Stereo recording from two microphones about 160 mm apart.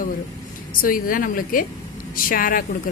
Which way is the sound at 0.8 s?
60° left (ahead or behind).